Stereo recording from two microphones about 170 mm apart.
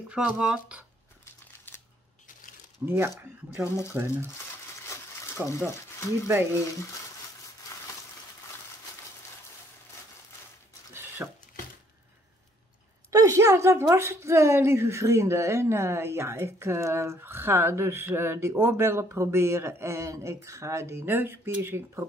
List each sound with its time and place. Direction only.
0.1 s speech: 5° right (ahead or behind)
2.8 s a woman's voice: 15° right (ahead or behind)
3.6 s speech: 15° left (ahead or behind)
3.9 s a woman's voice: 15° right (ahead or behind)
5.5 s speech: 15° left (ahead or behind)
6.2 s a woman's voice: 15° right (ahead or behind)
11.2 s a woman's voice: 10° right (ahead or behind)
13.1 s a woman's voice: 20° right (ahead or behind)